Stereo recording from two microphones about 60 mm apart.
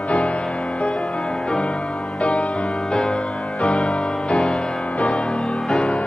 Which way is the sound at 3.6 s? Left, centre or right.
Centre.